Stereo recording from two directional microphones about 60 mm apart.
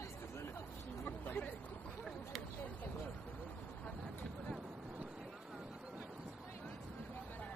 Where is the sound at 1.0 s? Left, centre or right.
Left.